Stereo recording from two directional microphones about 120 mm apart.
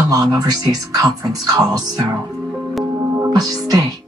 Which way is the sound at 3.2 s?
30° right (ahead or behind).